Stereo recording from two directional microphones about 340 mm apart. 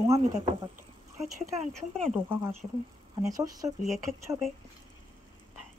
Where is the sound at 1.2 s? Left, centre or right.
Centre.